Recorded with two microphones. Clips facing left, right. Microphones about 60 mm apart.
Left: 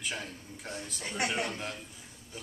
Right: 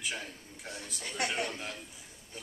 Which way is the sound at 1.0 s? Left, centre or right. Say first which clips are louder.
Left 1 dB; centre.